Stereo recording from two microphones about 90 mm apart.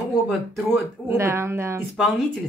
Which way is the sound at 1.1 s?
30° right (ahead or behind).